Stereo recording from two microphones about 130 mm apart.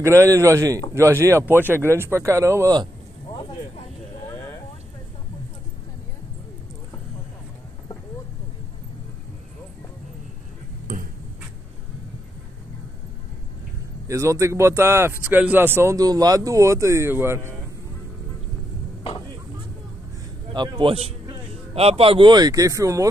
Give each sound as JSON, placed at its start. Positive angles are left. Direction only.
{"t": 0.2, "sound": "speech", "side_deg": -25}
{"t": 14.0, "sound": "speech", "side_deg": -25}
{"t": 20.5, "sound": "speech", "side_deg": -35}
{"t": 21.7, "sound": "speech", "side_deg": -50}